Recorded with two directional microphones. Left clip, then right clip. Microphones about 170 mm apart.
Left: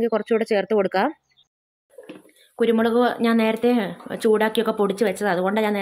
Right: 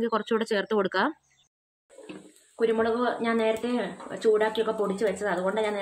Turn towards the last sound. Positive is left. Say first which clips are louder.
# left 5 dB
turn(degrees=70)  # may be behind; listen again after turning